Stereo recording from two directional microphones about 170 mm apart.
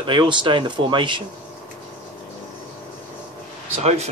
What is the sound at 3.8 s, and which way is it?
Speech, 40° right (ahead or behind).